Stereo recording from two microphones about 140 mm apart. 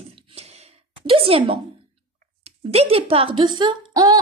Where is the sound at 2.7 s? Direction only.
45° right (ahead or behind); by 4.2 s 30° right (ahead or behind).